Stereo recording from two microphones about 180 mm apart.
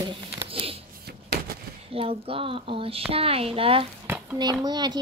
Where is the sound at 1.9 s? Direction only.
30° right (ahead or behind).